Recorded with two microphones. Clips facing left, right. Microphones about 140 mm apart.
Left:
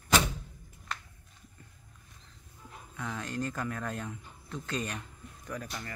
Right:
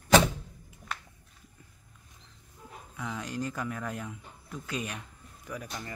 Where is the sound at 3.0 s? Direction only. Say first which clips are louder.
Even; 10° right (ahead or behind).